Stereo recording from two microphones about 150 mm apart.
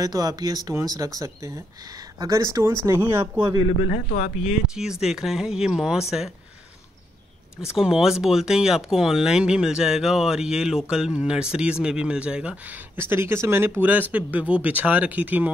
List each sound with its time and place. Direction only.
0.0 s speech: 25° right (ahead or behind)
3.6 s speech: 40° left (ahead or behind)
4.4 s speech: 5° right (ahead or behind)
7.7 s speech: 5° right (ahead or behind)